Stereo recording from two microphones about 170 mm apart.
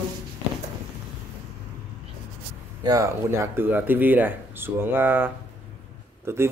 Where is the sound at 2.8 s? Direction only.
20° right (ahead or behind).